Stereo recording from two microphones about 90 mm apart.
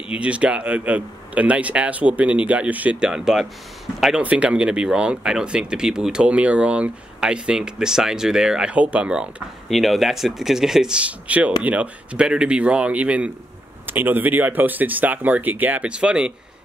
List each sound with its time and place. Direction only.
0.1 s speech: 15° right (ahead or behind)
9.7 s speech: centre (ahead or behind)